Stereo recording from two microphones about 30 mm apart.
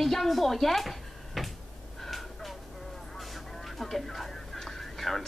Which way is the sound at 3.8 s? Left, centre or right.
Centre.